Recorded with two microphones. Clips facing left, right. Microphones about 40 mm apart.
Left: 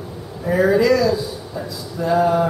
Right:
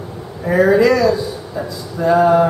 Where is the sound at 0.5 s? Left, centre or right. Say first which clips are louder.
Right 3 dB; centre.